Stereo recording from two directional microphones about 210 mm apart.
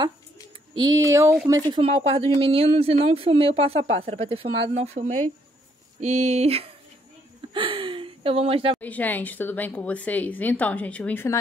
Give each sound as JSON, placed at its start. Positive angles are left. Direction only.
{"t": 0.7, "sound": "speech", "side_deg": -15}
{"t": 1.7, "sound": "speech", "side_deg": -25}
{"t": 8.7, "sound": "a woman's voice", "side_deg": 5}